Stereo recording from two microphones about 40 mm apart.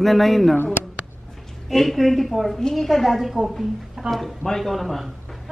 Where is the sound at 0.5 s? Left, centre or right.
Left.